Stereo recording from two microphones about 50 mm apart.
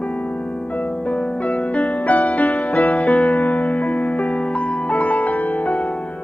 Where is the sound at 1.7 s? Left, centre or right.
Left.